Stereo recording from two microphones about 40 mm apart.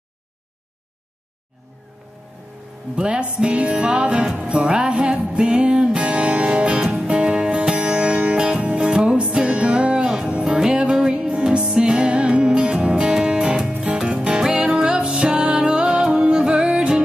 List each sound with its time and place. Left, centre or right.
3.0 s music: right